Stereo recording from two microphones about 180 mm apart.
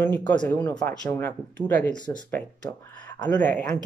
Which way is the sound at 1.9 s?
25° left (ahead or behind).